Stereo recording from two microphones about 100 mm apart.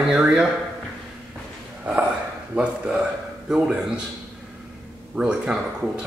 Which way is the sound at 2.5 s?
10° right (ahead or behind).